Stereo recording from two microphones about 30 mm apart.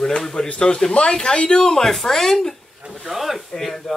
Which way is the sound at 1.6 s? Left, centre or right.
Centre.